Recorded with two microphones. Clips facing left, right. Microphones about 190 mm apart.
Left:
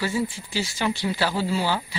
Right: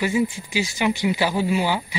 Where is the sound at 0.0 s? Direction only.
15° right (ahead or behind).